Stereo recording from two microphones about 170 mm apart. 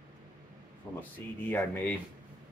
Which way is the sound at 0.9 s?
15° left (ahead or behind).